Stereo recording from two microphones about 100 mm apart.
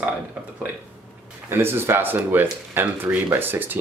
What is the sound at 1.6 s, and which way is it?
Speech, 25° right (ahead or behind).